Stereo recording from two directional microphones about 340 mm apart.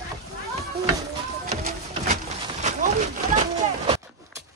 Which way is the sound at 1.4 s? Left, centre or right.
Centre.